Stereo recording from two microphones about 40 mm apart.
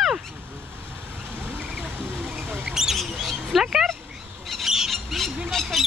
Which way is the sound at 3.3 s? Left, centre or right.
Centre.